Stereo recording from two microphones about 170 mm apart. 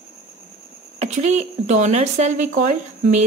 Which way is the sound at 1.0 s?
40° right (ahead or behind).